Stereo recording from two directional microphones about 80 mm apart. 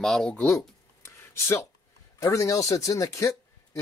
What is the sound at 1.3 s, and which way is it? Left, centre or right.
Speech, left.